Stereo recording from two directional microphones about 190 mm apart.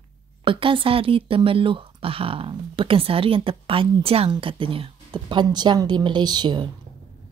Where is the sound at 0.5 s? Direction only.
25° right (ahead or behind).